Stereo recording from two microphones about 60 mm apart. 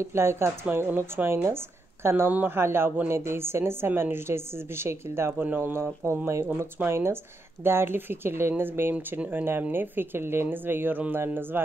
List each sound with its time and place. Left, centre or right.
0.0 s a woman's voice: right
0.7 s speech: right
0.9 s a woman's voice: right